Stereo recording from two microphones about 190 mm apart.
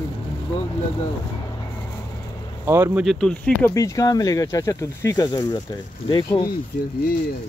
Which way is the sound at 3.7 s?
15° left (ahead or behind).